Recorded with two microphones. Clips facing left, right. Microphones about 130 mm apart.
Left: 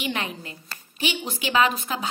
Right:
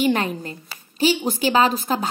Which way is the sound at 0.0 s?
40° right (ahead or behind).